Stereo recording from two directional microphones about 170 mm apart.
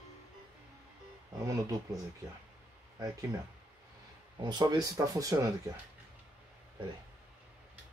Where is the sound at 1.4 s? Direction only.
20° right (ahead or behind).